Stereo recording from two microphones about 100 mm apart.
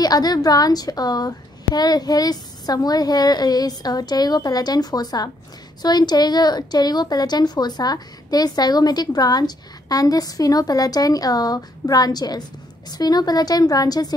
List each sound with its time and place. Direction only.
0.0 s a woman's voice: 40° left (ahead or behind)